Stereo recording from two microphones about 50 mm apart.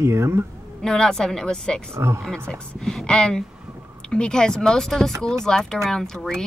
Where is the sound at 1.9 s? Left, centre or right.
Right.